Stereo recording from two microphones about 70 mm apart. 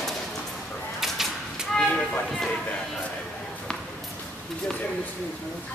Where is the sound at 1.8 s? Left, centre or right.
Centre.